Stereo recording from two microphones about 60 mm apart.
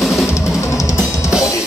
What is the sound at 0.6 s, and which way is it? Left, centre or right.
Drum kit, left.